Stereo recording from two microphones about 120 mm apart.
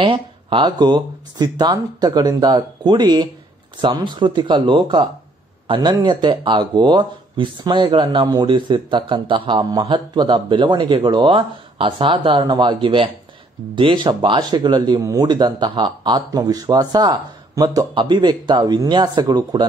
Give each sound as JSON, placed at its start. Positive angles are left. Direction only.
{"t": 0.0, "sound": "speech", "side_deg": -45}